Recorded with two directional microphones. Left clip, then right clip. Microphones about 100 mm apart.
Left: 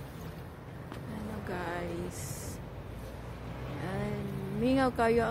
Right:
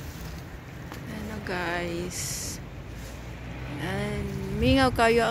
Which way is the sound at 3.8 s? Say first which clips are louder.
Right 6 dB; 30° right (ahead or behind).